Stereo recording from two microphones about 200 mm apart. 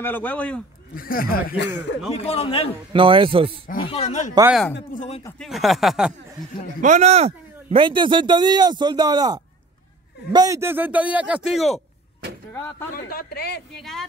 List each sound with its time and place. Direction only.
0.0 s a man's voice: 10° left (ahead or behind)
0.9 s speech: 45° left (ahead or behind)
2.1 s speech: 30° left (ahead or behind)
2.9 s speech: 25° right (ahead or behind)
3.9 s speech: 35° left (ahead or behind)
5.4 s speech: centre (ahead or behind)
6.8 s a man's voice: 35° right (ahead or behind); by 11.8 s centre (ahead or behind)
12.5 s a man's voice: 10° left (ahead or behind)
12.9 s speech: 50° left (ahead or behind)
13.7 s speech: centre (ahead or behind)